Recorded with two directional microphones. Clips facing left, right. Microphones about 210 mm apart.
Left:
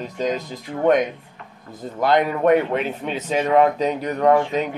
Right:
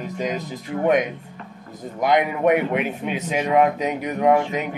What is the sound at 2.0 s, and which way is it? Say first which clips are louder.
Speech: left 1 dB; 15° right (ahead or behind).